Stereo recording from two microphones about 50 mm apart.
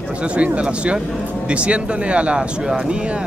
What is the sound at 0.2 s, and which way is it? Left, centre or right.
A man's voice, right.